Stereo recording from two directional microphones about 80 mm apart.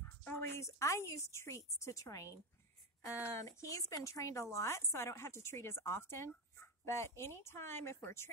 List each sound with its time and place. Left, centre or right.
0.0 s a woman's voice: left